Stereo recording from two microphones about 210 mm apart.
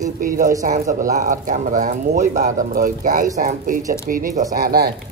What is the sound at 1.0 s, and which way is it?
A man's voice, 35° right (ahead or behind).